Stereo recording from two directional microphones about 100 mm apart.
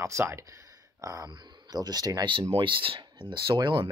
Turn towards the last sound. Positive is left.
turn(degrees=-55)  # may be behind; listen again after turning